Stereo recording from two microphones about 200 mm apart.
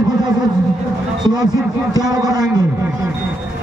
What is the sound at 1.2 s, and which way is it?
Speech, 20° right (ahead or behind).